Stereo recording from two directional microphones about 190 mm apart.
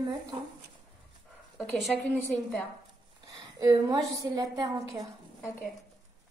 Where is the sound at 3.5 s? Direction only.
20° right (ahead or behind).